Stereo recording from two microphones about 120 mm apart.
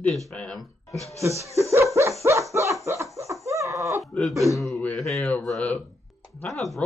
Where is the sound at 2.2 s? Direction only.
25° right (ahead or behind).